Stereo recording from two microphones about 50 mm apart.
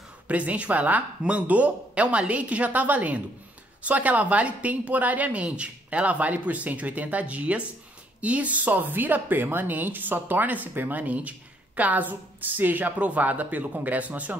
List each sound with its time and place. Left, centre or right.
0.3 s speech: right